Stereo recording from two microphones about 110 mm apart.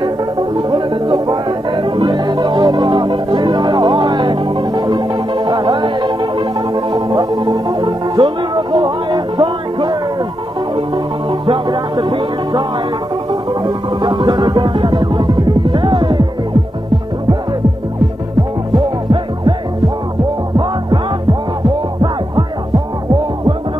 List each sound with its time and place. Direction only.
0.0 s music: 45° right (ahead or behind)
11.2 s music: 50° right (ahead or behind)
20.5 s music: 40° right (ahead or behind)